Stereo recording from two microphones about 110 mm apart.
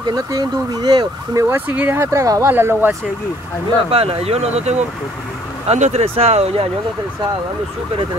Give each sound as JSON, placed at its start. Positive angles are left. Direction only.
{"t": 0.0, "sound": "speech", "side_deg": -35}
{"t": 1.4, "sound": "speech", "side_deg": -20}
{"t": 3.9, "sound": "speech", "side_deg": -60}